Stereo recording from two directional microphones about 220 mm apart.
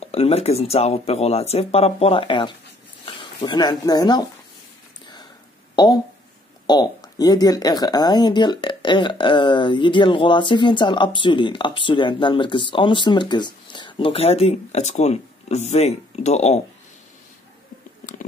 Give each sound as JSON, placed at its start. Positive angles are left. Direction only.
{"t": 0.0, "sound": "speech", "side_deg": 25}
{"t": 6.7, "sound": "speech", "side_deg": 20}